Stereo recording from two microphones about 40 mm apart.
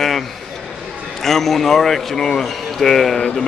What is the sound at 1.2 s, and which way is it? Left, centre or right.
A man's voice, centre.